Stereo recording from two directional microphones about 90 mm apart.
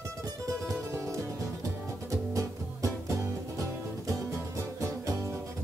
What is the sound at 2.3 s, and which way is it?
Music, 35° right (ahead or behind).